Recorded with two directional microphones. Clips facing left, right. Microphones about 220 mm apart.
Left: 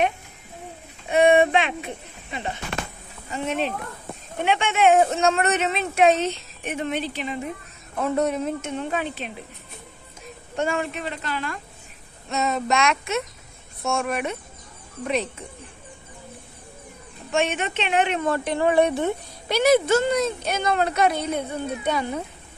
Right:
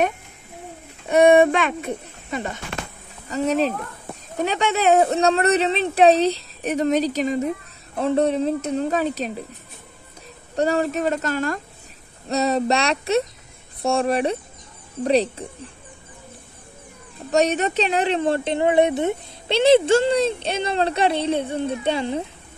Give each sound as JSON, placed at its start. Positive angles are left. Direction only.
{"t": 1.0, "sound": "speech", "side_deg": -45}
{"t": 10.5, "sound": "speech", "side_deg": -35}
{"t": 17.3, "sound": "speech", "side_deg": -40}